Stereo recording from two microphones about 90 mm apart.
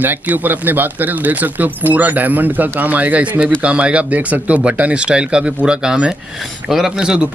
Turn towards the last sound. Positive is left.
turn(degrees=-10)  # may be behind; listen again after turning